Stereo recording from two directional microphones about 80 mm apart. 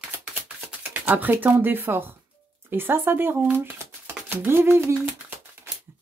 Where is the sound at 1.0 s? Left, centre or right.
Right.